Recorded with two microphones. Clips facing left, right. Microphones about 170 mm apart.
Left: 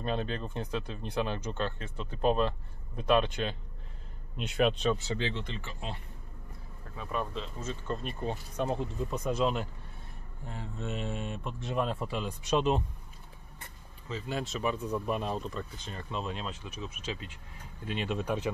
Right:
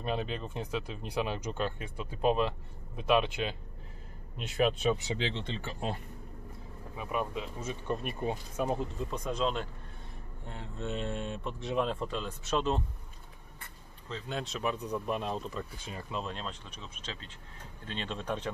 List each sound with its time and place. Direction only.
0.0 s speech: 5° right (ahead or behind); by 5.7 s 25° right (ahead or behind)
5.7 s speech: 45° right (ahead or behind)
7.0 s speech: 15° right (ahead or behind)
8.6 s speech: 5° left (ahead or behind)
14.0 s speech: 5° left (ahead or behind)